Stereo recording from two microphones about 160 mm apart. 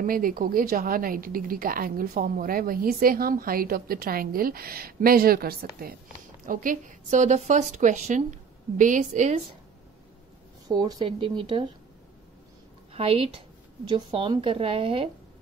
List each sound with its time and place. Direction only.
0.0 s a woman's voice: 60° right (ahead or behind)
6.4 s a woman's voice: 60° right (ahead or behind)
10.7 s speech: 25° right (ahead or behind)
12.9 s a woman's voice: 35° right (ahead or behind)